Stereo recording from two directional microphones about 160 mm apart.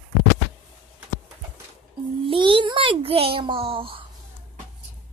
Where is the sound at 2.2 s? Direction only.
30° right (ahead or behind).